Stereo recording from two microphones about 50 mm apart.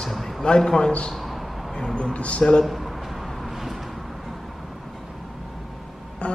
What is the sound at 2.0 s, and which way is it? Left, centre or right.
Speech, left.